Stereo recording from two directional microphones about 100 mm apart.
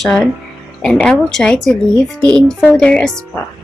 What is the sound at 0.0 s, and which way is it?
A woman's voice, 5° left (ahead or behind).